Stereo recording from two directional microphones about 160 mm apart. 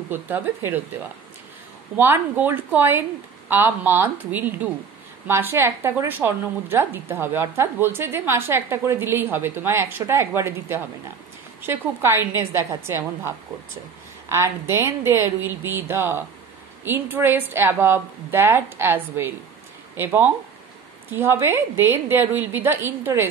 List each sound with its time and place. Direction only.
0.1 s a woman's voice: 15° right (ahead or behind)
2.0 s a woman's voice: 15° right (ahead or behind)
14.3 s a woman's voice: 15° right (ahead or behind)